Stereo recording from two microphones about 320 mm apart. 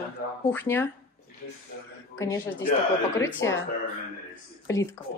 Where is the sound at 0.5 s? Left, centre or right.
Centre.